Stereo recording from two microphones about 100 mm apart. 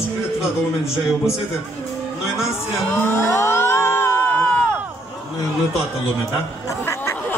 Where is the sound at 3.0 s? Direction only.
25° left (ahead or behind).